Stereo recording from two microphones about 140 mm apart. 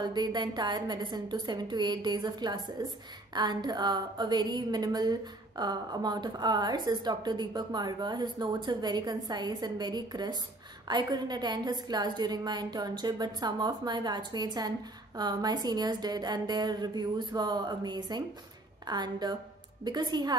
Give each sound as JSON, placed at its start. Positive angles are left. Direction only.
{"t": 0.0, "sound": "a woman's voice", "side_deg": -30}